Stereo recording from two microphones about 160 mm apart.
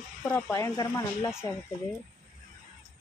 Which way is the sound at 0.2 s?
15° left (ahead or behind).